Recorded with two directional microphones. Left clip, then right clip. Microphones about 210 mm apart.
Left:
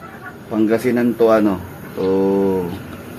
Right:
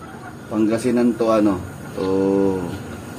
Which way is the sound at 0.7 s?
30° left (ahead or behind).